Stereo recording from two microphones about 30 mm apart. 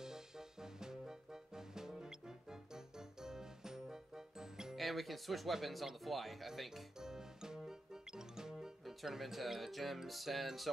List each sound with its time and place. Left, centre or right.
0.0 s music: centre
4.7 s speech: centre
7.0 s music: centre
8.8 s speech: centre